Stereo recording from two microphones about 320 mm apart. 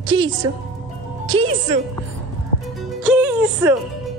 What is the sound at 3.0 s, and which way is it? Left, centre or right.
Music, centre.